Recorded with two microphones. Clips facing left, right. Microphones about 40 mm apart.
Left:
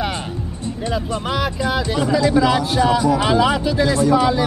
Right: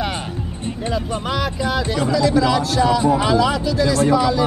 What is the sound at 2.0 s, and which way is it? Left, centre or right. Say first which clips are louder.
Speech: left 1 dB; left.